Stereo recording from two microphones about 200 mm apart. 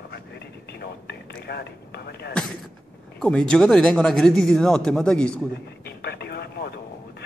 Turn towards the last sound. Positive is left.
turn(degrees=55)  # may be behind; listen again after turning